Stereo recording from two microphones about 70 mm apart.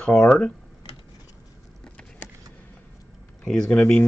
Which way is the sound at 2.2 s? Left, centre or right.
Left.